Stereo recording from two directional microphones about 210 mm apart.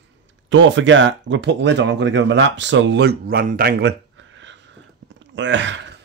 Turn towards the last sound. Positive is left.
turn(degrees=-60)  # may be behind; listen again after turning